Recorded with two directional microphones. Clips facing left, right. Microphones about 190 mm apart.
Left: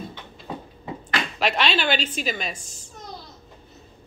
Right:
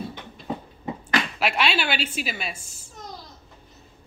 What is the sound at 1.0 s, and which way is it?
Speech, 10° right (ahead or behind).